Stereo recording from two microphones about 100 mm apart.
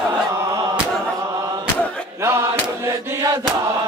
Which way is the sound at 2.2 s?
25° right (ahead or behind).